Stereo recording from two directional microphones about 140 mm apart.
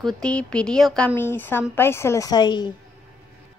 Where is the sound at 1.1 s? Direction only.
15° left (ahead or behind); by 2.7 s 30° left (ahead or behind).